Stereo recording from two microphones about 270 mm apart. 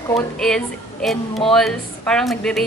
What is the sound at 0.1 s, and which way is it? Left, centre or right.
A woman's voice, centre.